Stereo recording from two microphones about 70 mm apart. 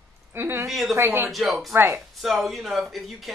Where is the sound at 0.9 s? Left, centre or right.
Right.